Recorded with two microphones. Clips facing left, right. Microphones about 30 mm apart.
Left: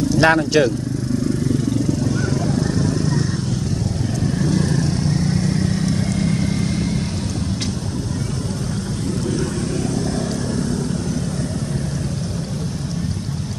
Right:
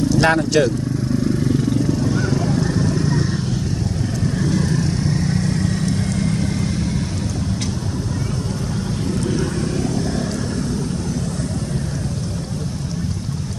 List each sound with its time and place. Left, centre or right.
0.2 s speech: centre
2.1 s vehicle: centre
4.4 s vehicle: centre